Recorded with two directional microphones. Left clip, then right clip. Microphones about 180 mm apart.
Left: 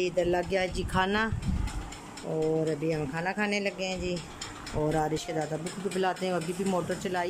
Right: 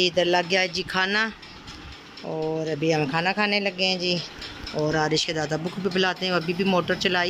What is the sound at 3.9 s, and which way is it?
Speech, 35° right (ahead or behind).